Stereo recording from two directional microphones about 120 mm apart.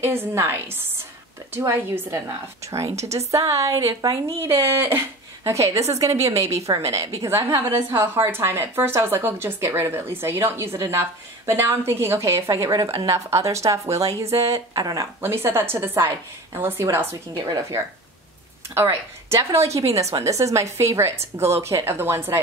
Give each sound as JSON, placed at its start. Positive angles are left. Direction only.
{"t": 0.0, "sound": "a woman's voice", "side_deg": -20}